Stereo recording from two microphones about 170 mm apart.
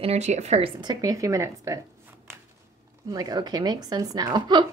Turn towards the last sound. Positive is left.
turn(degrees=-25)  # may be behind; listen again after turning